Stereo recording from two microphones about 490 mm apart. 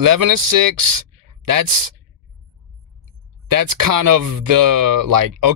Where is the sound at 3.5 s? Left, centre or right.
Right.